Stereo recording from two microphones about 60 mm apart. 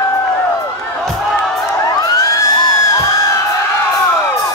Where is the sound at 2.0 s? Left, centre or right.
Left.